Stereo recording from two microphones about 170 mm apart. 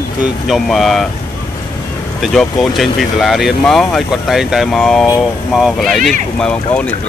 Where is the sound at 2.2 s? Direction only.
Centre (ahead or behind).